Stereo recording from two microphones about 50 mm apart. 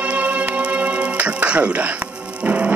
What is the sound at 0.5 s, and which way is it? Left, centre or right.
Music, right.